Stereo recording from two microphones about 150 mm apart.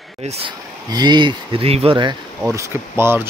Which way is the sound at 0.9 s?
30° right (ahead or behind).